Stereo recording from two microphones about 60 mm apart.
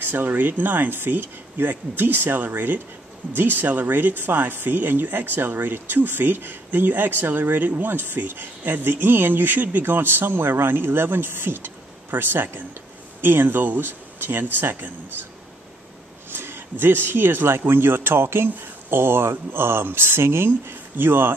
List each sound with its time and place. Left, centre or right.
0.0 s speech: right
16.3 s speech: right